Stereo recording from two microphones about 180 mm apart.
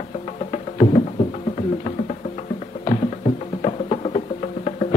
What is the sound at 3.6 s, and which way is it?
Music, 35° left (ahead or behind).